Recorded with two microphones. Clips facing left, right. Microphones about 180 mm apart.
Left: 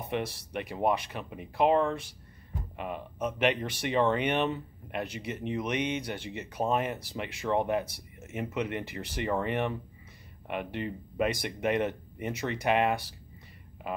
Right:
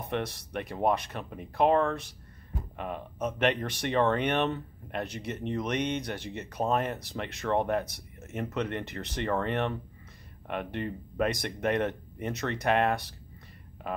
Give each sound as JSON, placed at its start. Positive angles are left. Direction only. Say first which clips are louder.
{"t": 0.0, "sound": "speech", "louder": "even", "side_deg": 5}